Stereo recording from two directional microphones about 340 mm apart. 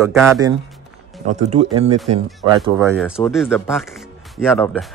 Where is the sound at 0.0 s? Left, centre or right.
Centre.